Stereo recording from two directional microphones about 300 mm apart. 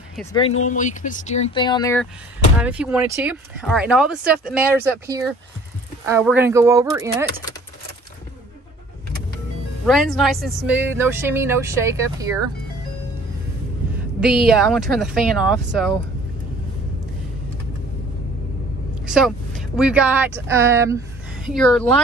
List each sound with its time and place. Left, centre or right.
0.3 s speech: centre
2.6 s speech: centre
9.8 s speech: centre
14.2 s speech: centre
19.0 s speech: centre
21.5 s speech: centre